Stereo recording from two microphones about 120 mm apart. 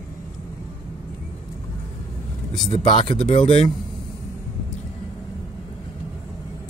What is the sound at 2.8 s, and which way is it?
Speech, 40° left (ahead or behind).